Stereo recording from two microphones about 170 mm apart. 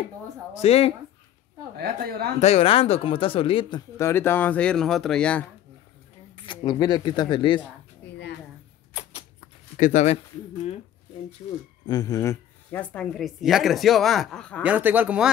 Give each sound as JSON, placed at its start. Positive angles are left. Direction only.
{"t": 0.6, "sound": "speech", "side_deg": 35}
{"t": 1.8, "sound": "speech", "side_deg": -65}
{"t": 2.4, "sound": "speech", "side_deg": 35}
{"t": 3.9, "sound": "speech", "side_deg": 15}
{"t": 6.3, "sound": "speech", "side_deg": 30}
{"t": 9.8, "sound": "speech", "side_deg": 45}
{"t": 11.8, "sound": "a man's voice", "side_deg": 20}
{"t": 12.9, "sound": "speech", "side_deg": 5}
{"t": 14.6, "sound": "speech", "side_deg": -10}